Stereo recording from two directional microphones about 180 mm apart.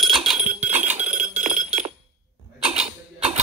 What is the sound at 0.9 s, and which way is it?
Chink, 40° right (ahead or behind).